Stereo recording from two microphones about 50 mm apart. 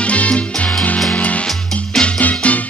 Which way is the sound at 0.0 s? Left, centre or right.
Left.